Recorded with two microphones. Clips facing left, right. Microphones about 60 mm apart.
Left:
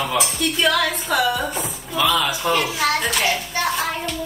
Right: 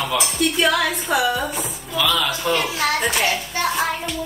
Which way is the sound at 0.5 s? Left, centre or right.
Centre.